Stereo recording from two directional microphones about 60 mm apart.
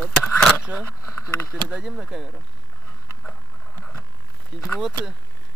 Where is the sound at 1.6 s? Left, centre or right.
Centre.